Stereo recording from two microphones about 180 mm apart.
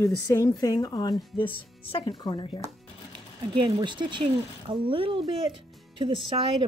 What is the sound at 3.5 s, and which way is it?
Speech, 25° right (ahead or behind).